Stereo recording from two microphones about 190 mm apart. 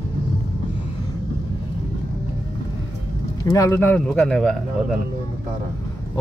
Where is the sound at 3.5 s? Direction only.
15° left (ahead or behind).